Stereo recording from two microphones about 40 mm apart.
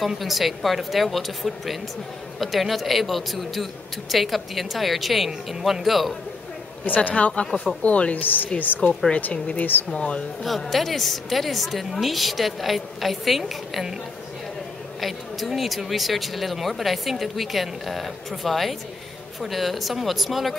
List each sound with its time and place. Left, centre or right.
0.0 s speech: centre
7.1 s speech: left
9.3 s speech: left
10.4 s a woman's voice: centre
15.0 s speech: centre